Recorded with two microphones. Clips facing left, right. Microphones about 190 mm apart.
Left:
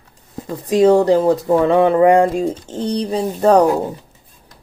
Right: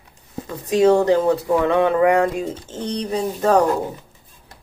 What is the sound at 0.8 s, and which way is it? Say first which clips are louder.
Speech: left 3 dB; 35° left (ahead or behind).